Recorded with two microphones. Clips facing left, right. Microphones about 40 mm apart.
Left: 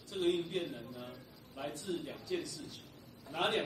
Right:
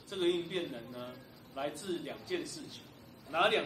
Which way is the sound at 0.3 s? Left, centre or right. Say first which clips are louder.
Left 1 dB; centre.